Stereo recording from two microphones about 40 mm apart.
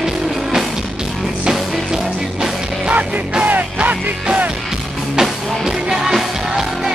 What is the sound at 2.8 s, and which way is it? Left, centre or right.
Music, right.